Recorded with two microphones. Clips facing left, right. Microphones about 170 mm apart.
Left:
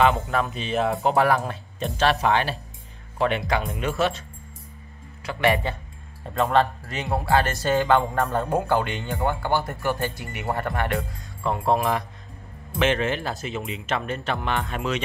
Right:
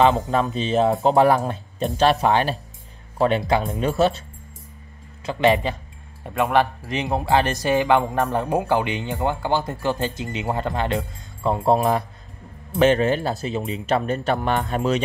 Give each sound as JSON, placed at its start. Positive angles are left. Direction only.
{"t": 0.0, "sound": "speech", "side_deg": -30}
{"t": 5.2, "sound": "speech", "side_deg": -25}